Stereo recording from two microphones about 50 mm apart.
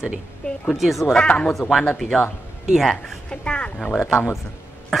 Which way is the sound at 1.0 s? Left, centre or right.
Left.